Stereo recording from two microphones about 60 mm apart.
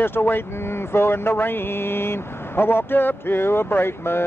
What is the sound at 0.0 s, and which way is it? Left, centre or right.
Speech, left.